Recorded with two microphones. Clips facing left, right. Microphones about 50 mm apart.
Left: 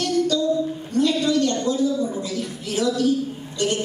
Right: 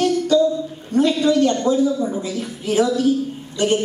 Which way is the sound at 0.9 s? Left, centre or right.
Right.